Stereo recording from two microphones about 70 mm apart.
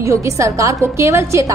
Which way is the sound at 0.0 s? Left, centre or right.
Right.